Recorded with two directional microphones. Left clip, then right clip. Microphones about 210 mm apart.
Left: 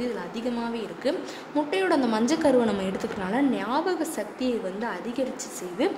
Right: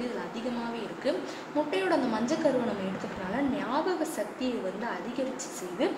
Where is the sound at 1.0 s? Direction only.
50° left (ahead or behind).